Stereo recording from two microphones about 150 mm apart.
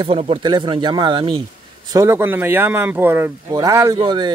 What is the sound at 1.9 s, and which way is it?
Speech, 20° right (ahead or behind).